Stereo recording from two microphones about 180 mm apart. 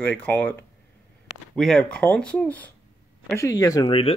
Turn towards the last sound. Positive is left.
turn(degrees=30)  # may be behind; listen again after turning